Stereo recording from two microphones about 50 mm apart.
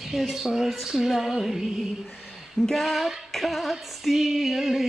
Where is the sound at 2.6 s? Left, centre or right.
Centre.